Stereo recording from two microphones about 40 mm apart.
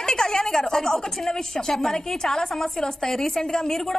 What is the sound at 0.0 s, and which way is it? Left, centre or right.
A woman's voice, centre.